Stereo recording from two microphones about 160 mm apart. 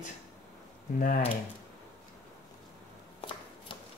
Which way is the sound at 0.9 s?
60° left (ahead or behind).